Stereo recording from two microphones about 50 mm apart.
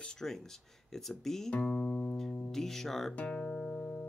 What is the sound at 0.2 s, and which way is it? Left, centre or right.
Speech, centre.